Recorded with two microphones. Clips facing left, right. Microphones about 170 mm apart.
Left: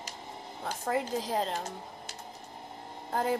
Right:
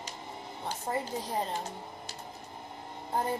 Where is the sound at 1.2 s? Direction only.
90° left.